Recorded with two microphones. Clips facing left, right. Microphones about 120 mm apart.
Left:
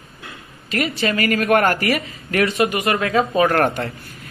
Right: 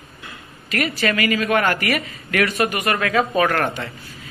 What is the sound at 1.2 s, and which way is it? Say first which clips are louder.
Speech: left 4 dB; 50° left (ahead or behind).